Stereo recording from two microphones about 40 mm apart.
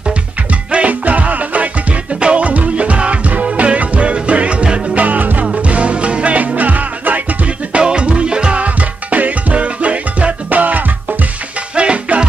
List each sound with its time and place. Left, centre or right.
0.5 s music: right
5.0 s music: right
5.6 s music: right
11.7 s music: right